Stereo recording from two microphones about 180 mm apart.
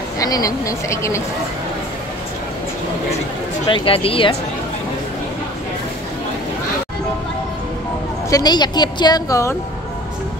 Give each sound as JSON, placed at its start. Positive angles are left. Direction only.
{"t": 0.2, "sound": "a woman's voice", "side_deg": 20}
{"t": 3.6, "sound": "speech", "side_deg": 30}
{"t": 8.3, "sound": "a woman's voice", "side_deg": 20}